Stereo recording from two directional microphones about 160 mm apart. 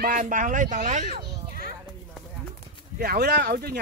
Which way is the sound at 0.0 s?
60° right (ahead or behind).